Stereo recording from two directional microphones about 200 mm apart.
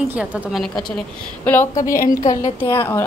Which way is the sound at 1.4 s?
10° left (ahead or behind).